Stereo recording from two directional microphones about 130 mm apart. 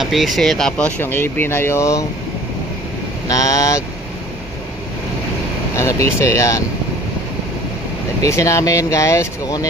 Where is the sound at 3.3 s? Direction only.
25° left (ahead or behind).